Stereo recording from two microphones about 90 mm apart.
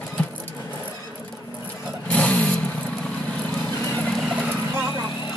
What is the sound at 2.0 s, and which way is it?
Vehicle, 15° left (ahead or behind).